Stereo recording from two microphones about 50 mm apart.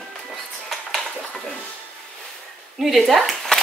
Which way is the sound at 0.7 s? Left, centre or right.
Centre.